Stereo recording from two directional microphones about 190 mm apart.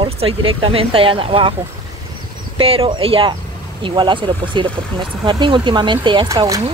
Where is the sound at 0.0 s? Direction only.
30° right (ahead or behind).